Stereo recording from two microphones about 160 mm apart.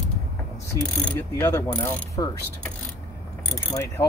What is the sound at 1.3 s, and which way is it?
Mechanisms, 15° left (ahead or behind).